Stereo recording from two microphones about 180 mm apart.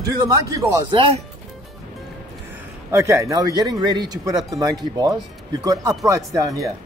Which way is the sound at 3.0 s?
15° right (ahead or behind).